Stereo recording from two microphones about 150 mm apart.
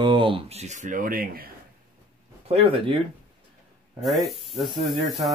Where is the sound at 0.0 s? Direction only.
35° right (ahead or behind); by 1.5 s 75° right (ahead or behind).